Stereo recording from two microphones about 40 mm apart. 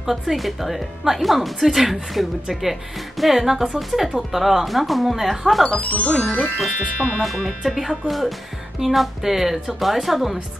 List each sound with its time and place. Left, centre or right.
0.0 s speech: centre
5.8 s speech: left
6.4 s speech: centre